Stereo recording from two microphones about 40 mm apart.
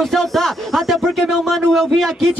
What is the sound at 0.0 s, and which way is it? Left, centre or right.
Speech, centre.